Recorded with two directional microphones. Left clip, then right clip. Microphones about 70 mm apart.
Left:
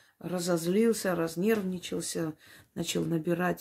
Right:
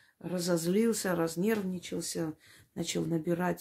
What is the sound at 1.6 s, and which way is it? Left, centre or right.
Speech, left.